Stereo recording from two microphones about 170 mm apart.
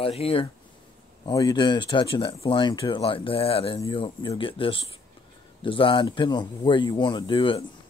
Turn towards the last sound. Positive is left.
turn(degrees=30)  # may be behind; listen again after turning